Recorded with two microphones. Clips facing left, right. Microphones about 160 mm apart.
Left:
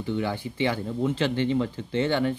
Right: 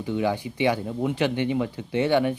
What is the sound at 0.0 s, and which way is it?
Speech, 15° right (ahead or behind).